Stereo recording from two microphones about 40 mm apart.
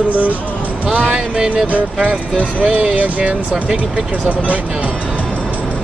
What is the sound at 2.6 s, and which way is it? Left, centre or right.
Speech, right.